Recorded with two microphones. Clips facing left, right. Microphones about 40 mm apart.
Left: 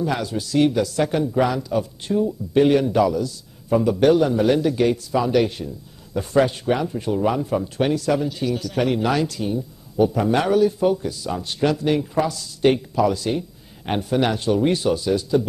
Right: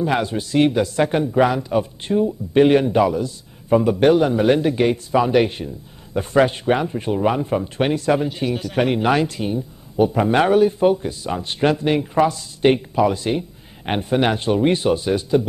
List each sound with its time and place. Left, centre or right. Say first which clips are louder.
0.0 s speech: right 3 dB; right